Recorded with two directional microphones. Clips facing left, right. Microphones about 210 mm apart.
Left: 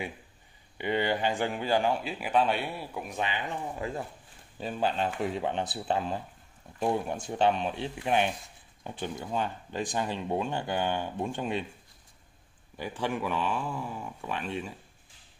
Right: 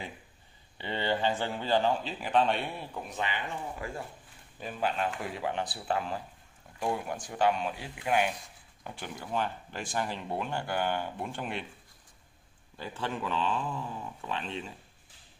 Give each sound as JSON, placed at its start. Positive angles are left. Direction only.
{"t": 0.7, "sound": "speech", "side_deg": 15}
{"t": 4.6, "sound": "speech", "side_deg": 30}
{"t": 12.7, "sound": "speech", "side_deg": 15}